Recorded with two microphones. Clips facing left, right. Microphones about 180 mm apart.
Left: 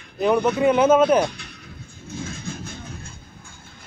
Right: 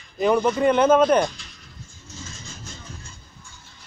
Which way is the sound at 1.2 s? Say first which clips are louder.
Left 1 dB; 60° left (ahead or behind).